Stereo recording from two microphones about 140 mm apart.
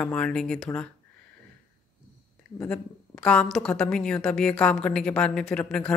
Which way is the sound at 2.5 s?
5° left (ahead or behind).